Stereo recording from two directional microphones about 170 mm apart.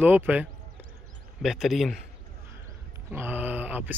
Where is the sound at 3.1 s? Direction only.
10° right (ahead or behind).